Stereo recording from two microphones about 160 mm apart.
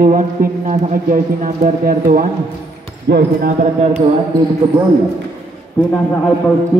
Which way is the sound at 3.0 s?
90° right.